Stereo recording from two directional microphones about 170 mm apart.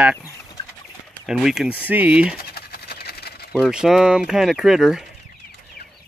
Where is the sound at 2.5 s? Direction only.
65° left (ahead or behind).